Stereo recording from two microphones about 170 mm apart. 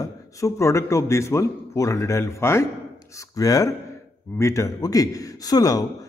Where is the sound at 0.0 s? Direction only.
20° left (ahead or behind).